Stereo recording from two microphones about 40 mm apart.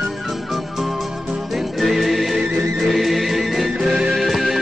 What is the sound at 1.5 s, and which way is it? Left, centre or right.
Music, centre.